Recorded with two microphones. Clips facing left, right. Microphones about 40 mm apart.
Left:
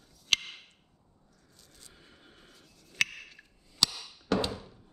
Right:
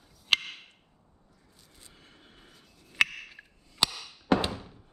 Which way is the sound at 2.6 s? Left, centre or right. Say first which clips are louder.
Right 4 dB; centre.